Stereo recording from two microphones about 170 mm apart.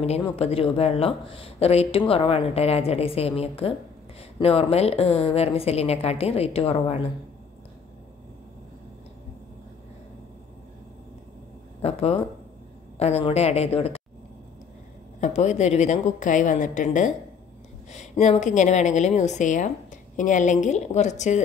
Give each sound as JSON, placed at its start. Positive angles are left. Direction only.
{"t": 0.4, "sound": "a woman's voice", "side_deg": 35}
{"t": 11.8, "sound": "a woman's voice", "side_deg": 35}
{"t": 15.1, "sound": "a woman's voice", "side_deg": 45}